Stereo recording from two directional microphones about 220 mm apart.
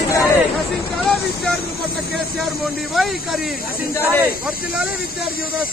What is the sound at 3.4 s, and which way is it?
Speech, 40° left (ahead or behind).